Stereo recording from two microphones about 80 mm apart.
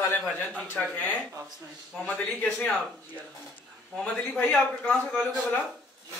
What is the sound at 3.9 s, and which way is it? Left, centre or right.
A man's voice, centre.